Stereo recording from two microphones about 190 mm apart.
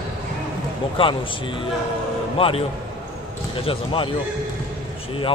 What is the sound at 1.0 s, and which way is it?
Speech, 25° left (ahead or behind).